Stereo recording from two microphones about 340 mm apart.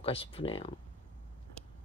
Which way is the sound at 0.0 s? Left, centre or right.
Centre.